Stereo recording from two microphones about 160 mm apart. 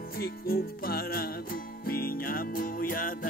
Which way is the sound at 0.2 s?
70° left (ahead or behind).